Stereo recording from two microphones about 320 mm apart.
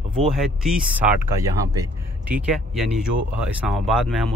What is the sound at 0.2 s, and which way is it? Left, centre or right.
Speech, centre.